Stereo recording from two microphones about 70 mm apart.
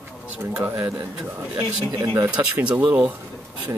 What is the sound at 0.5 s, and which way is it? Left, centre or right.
Speech, right.